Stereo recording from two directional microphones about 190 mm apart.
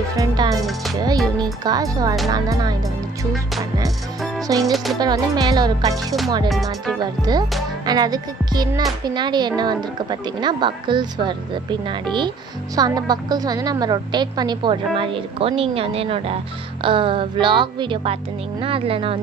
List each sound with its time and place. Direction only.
0.1 s a woman's voice: 20° right (ahead or behind)
4.5 s a woman's voice: 20° right (ahead or behind)
6.5 s speech: centre (ahead or behind)
7.2 s a woman's voice: 20° right (ahead or behind)